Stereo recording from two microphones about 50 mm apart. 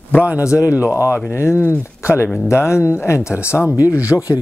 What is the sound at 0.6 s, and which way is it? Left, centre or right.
Speech, right.